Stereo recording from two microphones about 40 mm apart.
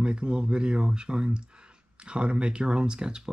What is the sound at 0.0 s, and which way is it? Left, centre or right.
Speech, right.